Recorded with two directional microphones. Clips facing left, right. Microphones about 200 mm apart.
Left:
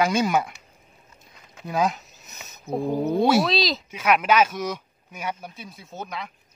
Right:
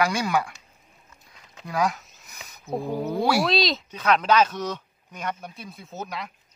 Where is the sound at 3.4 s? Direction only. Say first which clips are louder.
Even; centre (ahead or behind).